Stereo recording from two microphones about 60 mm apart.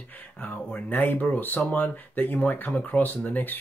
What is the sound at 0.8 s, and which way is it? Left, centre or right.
Speech, left.